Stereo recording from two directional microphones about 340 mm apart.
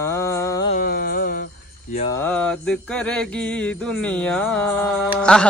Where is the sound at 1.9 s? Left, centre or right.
Centre.